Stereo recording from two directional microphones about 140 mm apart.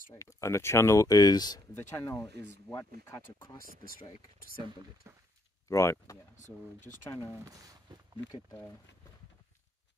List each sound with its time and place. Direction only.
0.1 s speech: 20° left (ahead or behind)
1.8 s speech: 15° left (ahead or behind)
5.1 s speech: 20° right (ahead or behind)
5.7 s speech: 20° left (ahead or behind)
7.4 s speech: 25° right (ahead or behind)